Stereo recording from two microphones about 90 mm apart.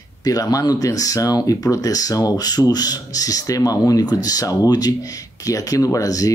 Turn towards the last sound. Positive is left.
turn(degrees=40)  # may be behind; listen again after turning